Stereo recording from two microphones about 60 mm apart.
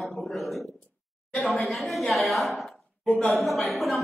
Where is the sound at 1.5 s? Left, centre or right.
Centre.